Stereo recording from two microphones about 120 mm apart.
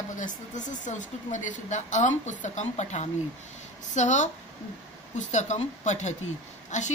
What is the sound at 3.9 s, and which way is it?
Speech, 90° left.